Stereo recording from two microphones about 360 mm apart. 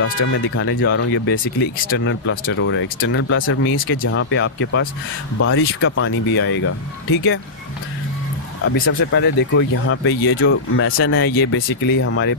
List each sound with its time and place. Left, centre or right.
0.0 s speech: left
8.8 s speech: left